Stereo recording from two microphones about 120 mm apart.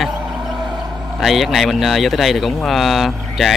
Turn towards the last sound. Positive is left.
turn(degrees=0)  # may be behind; listen again after turning